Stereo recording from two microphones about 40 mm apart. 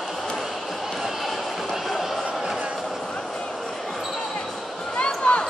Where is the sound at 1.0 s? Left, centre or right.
Centre.